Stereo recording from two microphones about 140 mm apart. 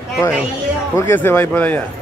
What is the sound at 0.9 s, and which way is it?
Speech, 20° left (ahead or behind).